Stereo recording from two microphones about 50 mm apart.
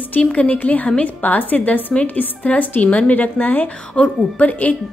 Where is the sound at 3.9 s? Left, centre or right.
Left.